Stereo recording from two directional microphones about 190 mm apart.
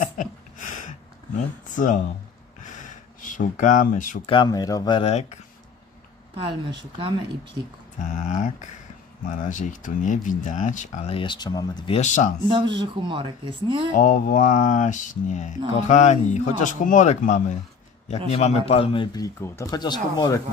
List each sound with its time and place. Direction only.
0.0 s a sound: 40° left (ahead or behind)
2.6 s a sound: 40° left (ahead or behind)
4.3 s speech: 25° left (ahead or behind)
6.3 s speech: 25° right (ahead or behind)
8.0 s speech: 40° left (ahead or behind)
12.4 s speech: 25° right (ahead or behind)
13.9 s speech: 45° left (ahead or behind); by 20.4 s 20° left (ahead or behind)